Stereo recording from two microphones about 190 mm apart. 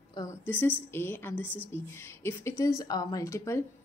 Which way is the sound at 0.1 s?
20° left (ahead or behind).